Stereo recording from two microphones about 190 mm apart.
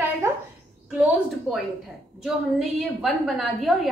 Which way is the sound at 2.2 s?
Centre (ahead or behind).